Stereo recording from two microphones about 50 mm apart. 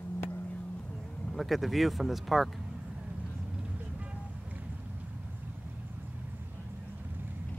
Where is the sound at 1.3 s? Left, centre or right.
Centre.